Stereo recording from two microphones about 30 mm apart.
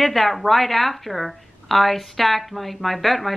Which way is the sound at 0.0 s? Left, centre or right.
Centre.